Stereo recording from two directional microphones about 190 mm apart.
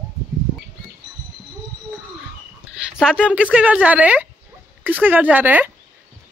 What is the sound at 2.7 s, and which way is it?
Speech, 5° right (ahead or behind).